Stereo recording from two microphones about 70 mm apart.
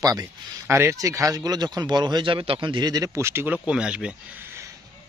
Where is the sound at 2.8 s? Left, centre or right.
Right.